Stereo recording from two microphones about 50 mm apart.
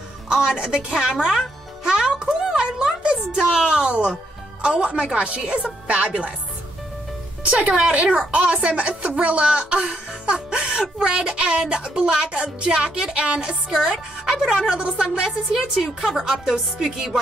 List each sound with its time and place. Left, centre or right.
0.5 s a woman's voice: centre
1.9 s music: centre
2.5 s speech: centre
7.4 s a woman's voice: right; by 17.2 s centre